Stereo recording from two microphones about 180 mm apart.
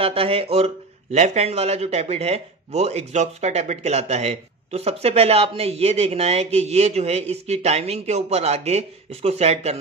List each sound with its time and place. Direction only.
0.0 s speech: 30° right (ahead or behind)